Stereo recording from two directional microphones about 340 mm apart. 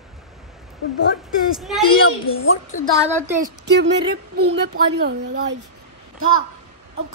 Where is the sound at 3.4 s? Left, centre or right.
Right.